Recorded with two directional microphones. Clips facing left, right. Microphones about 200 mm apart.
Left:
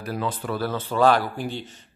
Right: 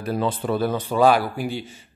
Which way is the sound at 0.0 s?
25° right (ahead or behind).